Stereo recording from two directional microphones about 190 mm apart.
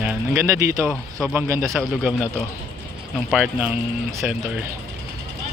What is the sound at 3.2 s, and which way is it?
Speech, 5° right (ahead or behind).